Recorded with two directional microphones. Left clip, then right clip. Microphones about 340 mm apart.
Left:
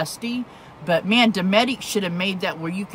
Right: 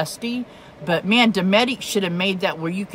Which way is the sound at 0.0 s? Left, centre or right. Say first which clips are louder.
Right 1 dB; centre.